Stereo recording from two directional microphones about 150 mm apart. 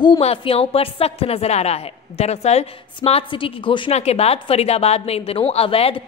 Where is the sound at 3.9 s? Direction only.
45° left (ahead or behind).